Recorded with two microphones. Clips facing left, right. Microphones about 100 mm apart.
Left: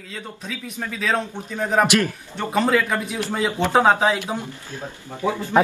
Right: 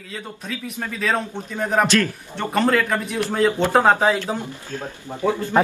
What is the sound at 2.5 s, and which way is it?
A man's voice, 5° left (ahead or behind).